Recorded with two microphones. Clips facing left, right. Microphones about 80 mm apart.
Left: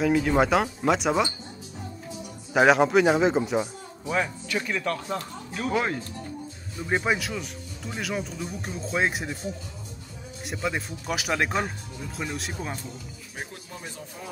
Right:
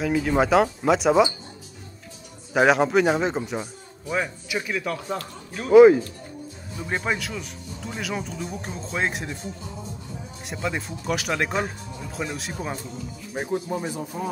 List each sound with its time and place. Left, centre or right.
0.0 s speech: centre
2.5 s speech: centre
6.9 s speech: centre
10.4 s speech: centre
13.3 s speech: right